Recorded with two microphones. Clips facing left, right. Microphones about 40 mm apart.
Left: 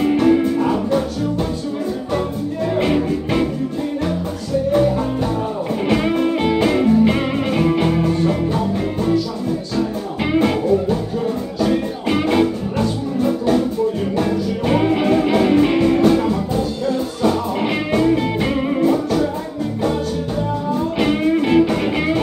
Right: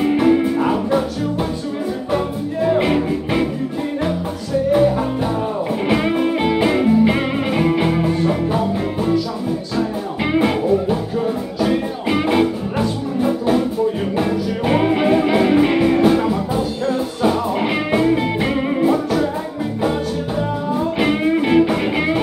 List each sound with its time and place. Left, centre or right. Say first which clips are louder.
0.0 s music: even; centre
2.1 s music: right 2 dB; centre
4.7 s music: right 1 dB; centre
21.0 s music: left 1 dB; centre